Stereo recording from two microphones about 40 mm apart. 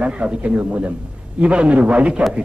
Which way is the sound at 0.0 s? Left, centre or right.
Right.